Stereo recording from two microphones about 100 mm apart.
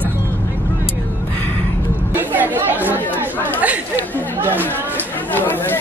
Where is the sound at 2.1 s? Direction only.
20° right (ahead or behind).